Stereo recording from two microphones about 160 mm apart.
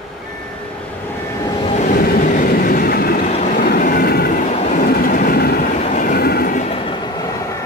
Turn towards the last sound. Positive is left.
turn(degrees=70)  # may be behind; listen again after turning